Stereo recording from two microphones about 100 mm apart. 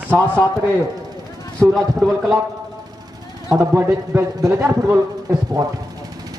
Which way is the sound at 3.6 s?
30° right (ahead or behind).